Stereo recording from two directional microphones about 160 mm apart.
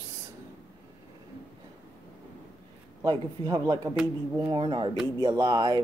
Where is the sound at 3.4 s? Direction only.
30° right (ahead or behind).